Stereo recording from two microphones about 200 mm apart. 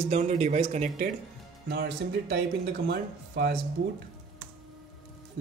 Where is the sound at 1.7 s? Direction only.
55° right (ahead or behind).